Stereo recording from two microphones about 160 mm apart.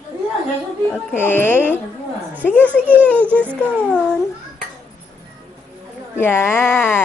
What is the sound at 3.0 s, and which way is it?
Speech, 10° left (ahead or behind).